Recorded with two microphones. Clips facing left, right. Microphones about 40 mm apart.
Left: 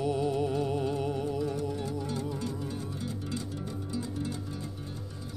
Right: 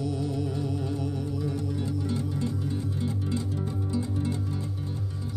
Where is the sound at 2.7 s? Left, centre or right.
Right.